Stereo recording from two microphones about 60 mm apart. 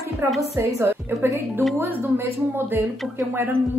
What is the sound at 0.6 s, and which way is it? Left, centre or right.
Speech, right.